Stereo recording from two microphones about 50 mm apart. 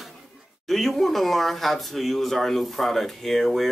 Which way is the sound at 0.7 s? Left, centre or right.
Centre.